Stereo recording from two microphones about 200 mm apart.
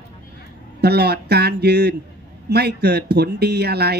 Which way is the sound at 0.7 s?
55° right (ahead or behind).